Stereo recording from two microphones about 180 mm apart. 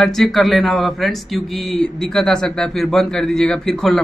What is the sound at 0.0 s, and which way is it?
A man's voice, centre (ahead or behind).